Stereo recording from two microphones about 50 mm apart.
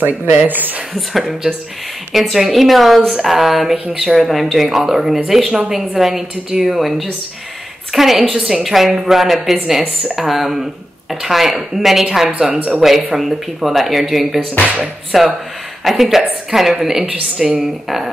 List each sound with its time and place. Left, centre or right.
0.0 s speech: right
2.1 s a woman's voice: centre
12.3 s a woman's voice: right
12.8 s a woman's voice: centre